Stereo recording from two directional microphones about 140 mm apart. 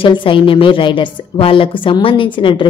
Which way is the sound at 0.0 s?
35° left (ahead or behind).